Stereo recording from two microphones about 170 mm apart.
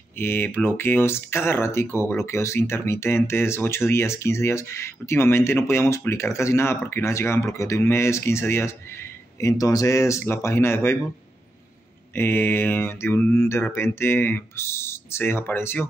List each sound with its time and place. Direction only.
0.2 s speech: 10° left (ahead or behind)
12.2 s speech: 10° left (ahead or behind)